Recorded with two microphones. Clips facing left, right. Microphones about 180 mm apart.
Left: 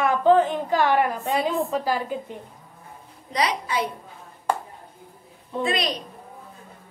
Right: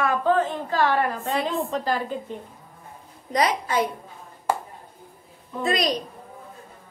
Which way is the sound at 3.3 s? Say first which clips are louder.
Right 2 dB; 50° right (ahead or behind).